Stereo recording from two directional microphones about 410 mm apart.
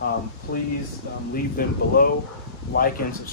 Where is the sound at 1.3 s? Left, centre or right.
Left.